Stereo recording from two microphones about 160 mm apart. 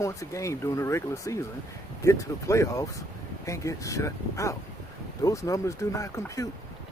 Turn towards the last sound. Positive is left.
turn(degrees=20)  # may be behind; listen again after turning